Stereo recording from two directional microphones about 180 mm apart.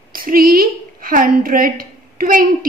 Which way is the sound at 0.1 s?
55° right (ahead or behind).